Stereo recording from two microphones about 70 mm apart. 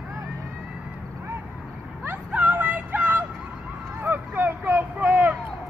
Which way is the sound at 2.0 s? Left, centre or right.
Right.